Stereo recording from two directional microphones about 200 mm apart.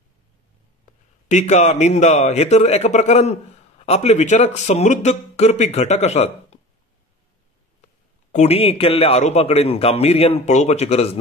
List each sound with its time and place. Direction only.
1.3 s a man's voice: 35° left (ahead or behind)
8.3 s a man's voice: 35° left (ahead or behind)